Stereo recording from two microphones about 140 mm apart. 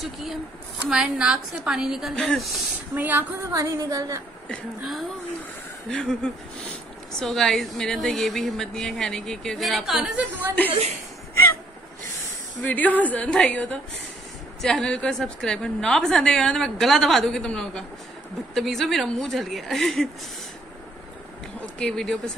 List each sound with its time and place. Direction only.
0.0 s a woman's voice: centre (ahead or behind)
2.9 s a woman's voice: 15° right (ahead or behind)
4.5 s a woman's voice: centre (ahead or behind)
12.6 s a woman's voice: 10° left (ahead or behind)
21.7 s a woman's voice: 5° left (ahead or behind)